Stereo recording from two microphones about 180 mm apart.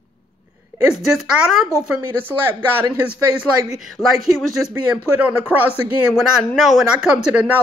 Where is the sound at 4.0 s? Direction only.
20° left (ahead or behind).